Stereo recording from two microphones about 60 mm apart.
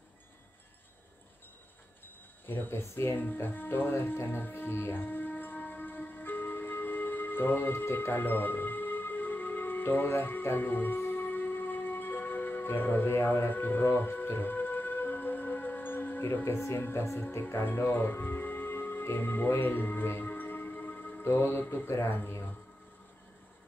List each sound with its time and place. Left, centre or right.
2.4 s speech: left
3.3 s music: left
16.4 s speech: left
21.2 s speech: left